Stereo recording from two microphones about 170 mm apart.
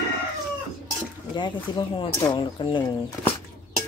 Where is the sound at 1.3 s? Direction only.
25° left (ahead or behind).